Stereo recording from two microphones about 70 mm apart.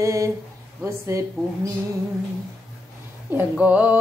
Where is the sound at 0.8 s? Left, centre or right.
Right.